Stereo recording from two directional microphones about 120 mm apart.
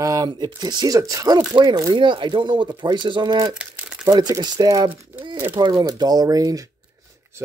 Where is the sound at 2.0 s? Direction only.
40° right (ahead or behind).